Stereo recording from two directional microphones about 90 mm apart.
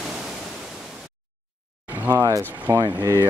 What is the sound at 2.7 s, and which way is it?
Speech, 40° right (ahead or behind).